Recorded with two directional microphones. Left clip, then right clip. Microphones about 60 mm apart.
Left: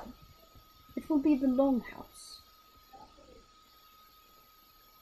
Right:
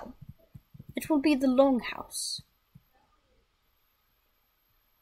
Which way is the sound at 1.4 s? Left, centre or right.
Right.